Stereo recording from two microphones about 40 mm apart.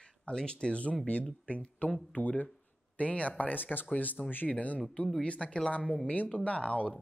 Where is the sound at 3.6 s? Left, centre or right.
Left.